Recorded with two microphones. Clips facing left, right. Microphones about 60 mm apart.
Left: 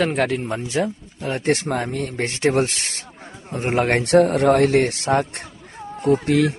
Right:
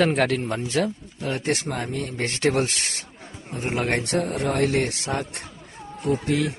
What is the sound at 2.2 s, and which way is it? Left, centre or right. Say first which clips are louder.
Speech: left 3 dB; left.